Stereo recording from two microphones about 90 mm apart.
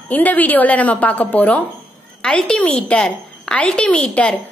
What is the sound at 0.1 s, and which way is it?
A woman's voice, 20° left (ahead or behind).